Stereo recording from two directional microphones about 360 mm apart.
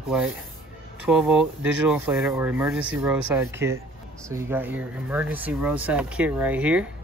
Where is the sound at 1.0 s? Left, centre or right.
Centre.